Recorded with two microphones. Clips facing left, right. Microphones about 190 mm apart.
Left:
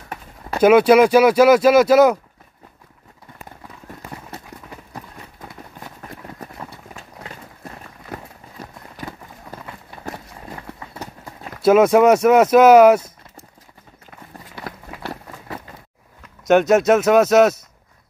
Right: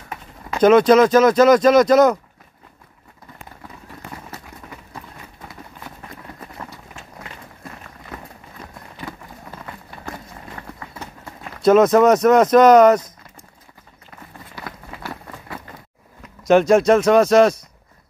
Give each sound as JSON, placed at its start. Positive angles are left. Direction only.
{"t": 0.6, "sound": "speech", "side_deg": 10}
{"t": 11.6, "sound": "speech", "side_deg": 10}
{"t": 16.4, "sound": "speech", "side_deg": 0}